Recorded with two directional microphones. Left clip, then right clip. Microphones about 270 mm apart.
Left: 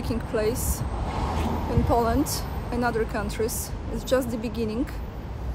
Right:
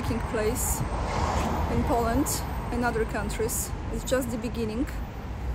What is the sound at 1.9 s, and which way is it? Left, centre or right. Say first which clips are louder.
Speech: left 4 dB; centre.